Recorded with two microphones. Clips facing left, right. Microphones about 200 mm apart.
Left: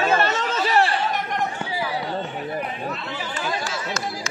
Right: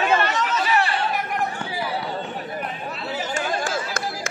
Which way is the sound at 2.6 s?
Centre (ahead or behind).